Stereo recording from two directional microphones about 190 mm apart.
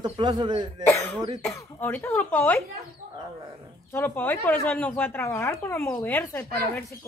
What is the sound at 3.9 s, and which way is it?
Speech, 10° left (ahead or behind).